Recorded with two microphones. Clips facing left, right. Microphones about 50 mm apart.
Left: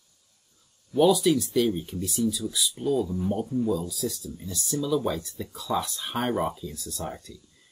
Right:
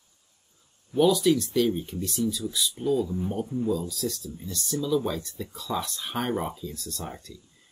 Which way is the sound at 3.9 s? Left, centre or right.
Centre.